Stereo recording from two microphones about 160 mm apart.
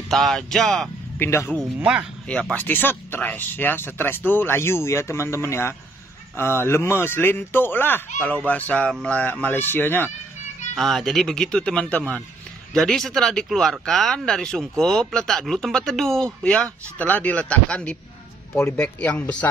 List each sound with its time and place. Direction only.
0.1 s speech: centre (ahead or behind)
1.2 s speech: 15° left (ahead or behind)
1.8 s speech: 10° right (ahead or behind)
2.5 s speech: 10° left (ahead or behind)
10.7 s speech: centre (ahead or behind)